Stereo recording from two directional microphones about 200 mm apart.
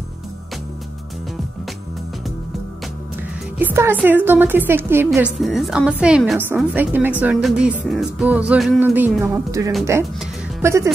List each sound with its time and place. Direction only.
3.5 s a woman's voice: 10° right (ahead or behind)